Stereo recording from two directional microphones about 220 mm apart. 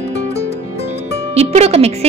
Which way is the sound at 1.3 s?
30° right (ahead or behind).